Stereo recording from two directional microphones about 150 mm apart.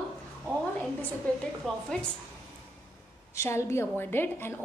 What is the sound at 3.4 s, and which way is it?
A woman's voice, 15° left (ahead or behind).